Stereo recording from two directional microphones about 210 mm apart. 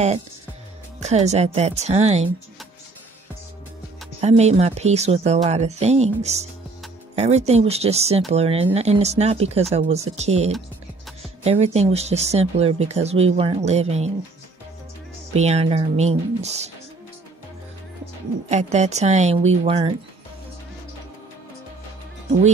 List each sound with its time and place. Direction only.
0.9 s speech: 30° right (ahead or behind)
4.2 s speech: 30° right (ahead or behind)
15.3 s speech: 30° right (ahead or behind)
18.5 s speech: 35° right (ahead or behind)